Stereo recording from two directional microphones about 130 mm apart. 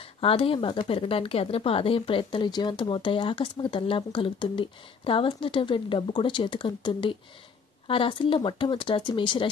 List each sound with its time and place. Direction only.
0.2 s speech: 45° left (ahead or behind)